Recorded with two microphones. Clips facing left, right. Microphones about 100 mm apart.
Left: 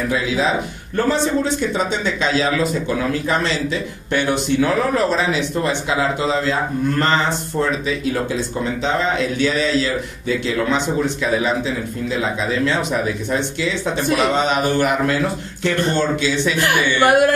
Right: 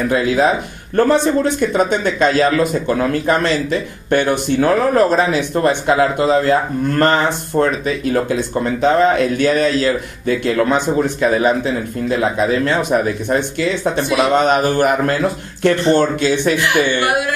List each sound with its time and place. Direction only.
0.1 s speech: 50° right (ahead or behind)
16.5 s a woman's voice: 45° left (ahead or behind)